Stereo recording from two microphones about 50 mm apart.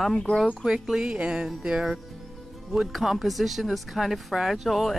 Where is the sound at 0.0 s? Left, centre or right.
Centre.